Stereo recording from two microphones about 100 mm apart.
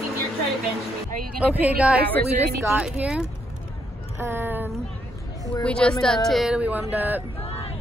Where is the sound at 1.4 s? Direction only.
15° right (ahead or behind).